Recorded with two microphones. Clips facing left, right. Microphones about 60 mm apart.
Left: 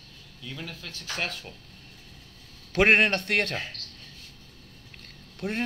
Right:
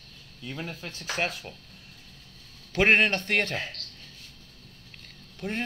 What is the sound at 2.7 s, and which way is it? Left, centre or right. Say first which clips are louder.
Speech: left 1 dB; centre.